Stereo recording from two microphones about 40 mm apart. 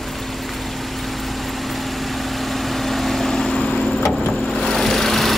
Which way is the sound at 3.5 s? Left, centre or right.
Left.